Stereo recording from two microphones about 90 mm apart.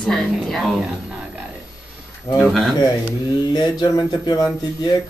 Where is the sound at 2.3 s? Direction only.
Centre (ahead or behind).